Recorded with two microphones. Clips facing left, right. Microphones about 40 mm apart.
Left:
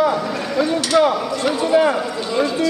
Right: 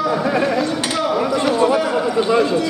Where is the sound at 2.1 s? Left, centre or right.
Right.